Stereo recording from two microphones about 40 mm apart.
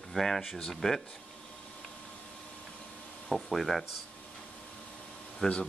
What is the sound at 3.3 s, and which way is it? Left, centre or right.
Speech, centre.